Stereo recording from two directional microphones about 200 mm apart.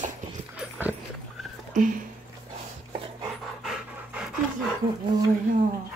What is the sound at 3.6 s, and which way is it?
Pant, 5° right (ahead or behind).